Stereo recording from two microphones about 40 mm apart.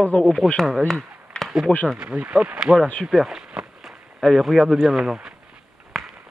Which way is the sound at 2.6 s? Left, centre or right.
Centre.